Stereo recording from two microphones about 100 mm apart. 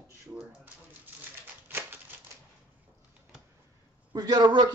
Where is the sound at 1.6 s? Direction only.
20° right (ahead or behind).